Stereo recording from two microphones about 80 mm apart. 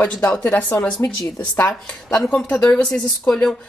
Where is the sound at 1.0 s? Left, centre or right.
Left.